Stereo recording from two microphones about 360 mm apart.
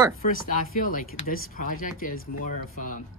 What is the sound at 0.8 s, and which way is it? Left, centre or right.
Speech, left.